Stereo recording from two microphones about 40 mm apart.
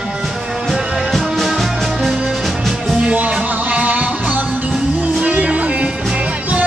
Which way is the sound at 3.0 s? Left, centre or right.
Right.